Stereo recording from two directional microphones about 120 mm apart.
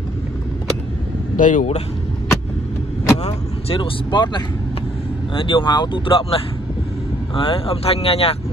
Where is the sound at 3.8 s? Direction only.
40° left (ahead or behind); by 8.3 s 55° left (ahead or behind).